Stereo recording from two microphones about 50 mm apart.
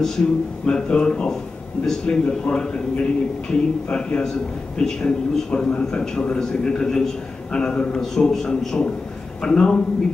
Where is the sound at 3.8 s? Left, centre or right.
Centre.